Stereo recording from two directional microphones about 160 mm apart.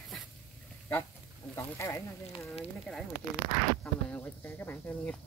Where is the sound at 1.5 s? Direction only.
20° left (ahead or behind).